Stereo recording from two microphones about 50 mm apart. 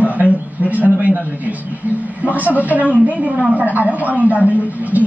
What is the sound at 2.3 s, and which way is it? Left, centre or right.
Speech, right.